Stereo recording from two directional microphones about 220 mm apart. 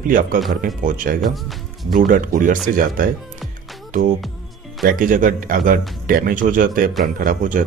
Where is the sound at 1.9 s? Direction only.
35° right (ahead or behind).